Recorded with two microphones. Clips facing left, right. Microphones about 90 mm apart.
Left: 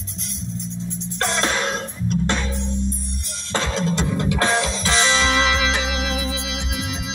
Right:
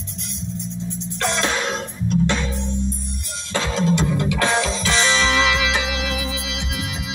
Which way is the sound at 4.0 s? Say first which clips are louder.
Right 1 dB; 35° left (ahead or behind).